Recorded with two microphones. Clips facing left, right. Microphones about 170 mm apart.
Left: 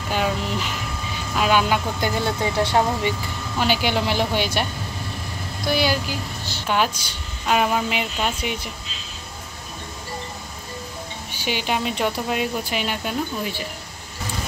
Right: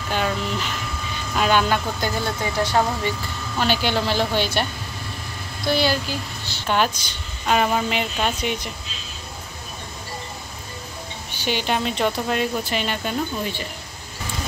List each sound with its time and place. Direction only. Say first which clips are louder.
0.1 s a sound: left 1 dB; 10° left (ahead or behind)
2.0 s speech: left 2 dB; 20° left (ahead or behind)
3.5 s speech: even; 10° left (ahead or behind)
5.7 s a woman's voice: right 1 dB; 10° left (ahead or behind)
11.3 s speech: right 1 dB; 10° left (ahead or behind)